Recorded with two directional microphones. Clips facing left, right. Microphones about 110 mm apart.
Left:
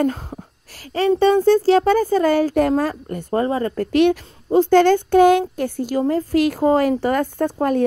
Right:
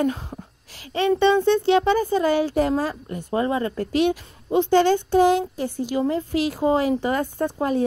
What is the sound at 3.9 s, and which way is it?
Speech, 55° left (ahead or behind).